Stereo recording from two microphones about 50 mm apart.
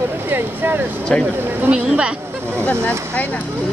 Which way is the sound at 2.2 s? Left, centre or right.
Right.